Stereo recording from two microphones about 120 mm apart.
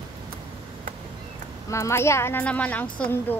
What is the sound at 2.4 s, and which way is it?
Speech, 10° left (ahead or behind).